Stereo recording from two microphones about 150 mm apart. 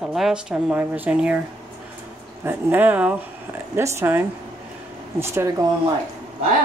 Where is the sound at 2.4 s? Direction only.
15° right (ahead or behind).